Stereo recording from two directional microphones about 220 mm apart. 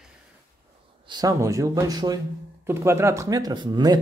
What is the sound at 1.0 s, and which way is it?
Speech, 20° right (ahead or behind).